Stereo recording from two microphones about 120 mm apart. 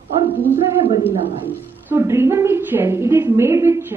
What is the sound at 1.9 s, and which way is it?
A woman's voice, 20° right (ahead or behind).